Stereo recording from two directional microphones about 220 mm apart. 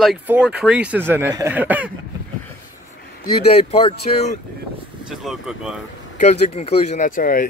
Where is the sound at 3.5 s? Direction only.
30° left (ahead or behind).